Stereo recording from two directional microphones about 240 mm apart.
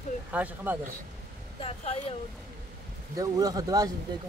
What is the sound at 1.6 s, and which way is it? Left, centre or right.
Speech, left.